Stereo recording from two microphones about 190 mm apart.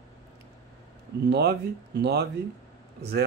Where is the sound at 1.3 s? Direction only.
60° right (ahead or behind).